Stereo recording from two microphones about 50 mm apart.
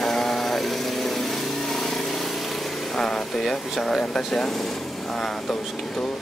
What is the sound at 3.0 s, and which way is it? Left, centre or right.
Speech, centre.